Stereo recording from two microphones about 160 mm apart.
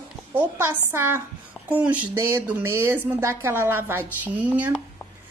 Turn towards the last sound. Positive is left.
turn(degrees=-10)  # may be behind; listen again after turning